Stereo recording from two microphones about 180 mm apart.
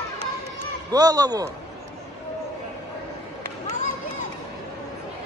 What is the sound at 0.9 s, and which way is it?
Speech, 20° right (ahead or behind).